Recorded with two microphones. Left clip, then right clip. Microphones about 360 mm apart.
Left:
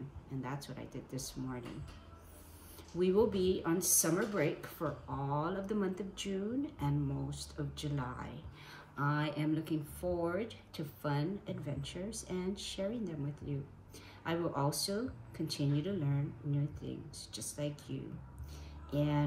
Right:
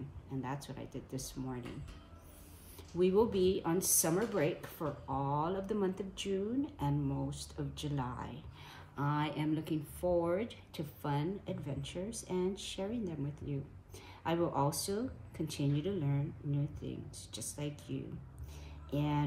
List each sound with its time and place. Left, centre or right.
0.4 s speech: centre
3.0 s speech: centre